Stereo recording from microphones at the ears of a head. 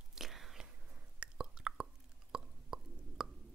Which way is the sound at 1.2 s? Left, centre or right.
Right.